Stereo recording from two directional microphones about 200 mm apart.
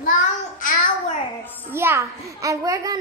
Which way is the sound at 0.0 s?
40° left (ahead or behind).